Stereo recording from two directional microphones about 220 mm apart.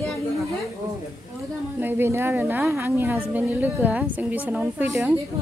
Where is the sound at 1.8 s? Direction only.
10° right (ahead or behind).